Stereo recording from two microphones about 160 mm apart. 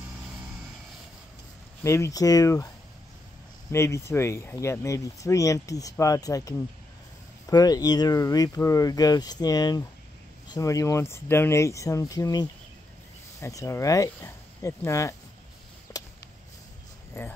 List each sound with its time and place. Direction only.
1.8 s speech: 15° left (ahead or behind)
3.7 s speech: 15° left (ahead or behind)
15.9 s a sound: 15° left (ahead or behind)
17.1 s speech: 15° left (ahead or behind)